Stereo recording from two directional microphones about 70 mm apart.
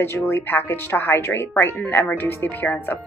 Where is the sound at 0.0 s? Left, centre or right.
Left.